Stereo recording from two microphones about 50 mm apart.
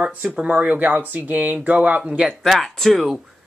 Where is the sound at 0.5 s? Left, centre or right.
Right.